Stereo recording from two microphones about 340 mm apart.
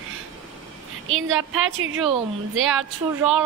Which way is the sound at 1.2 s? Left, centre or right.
Right.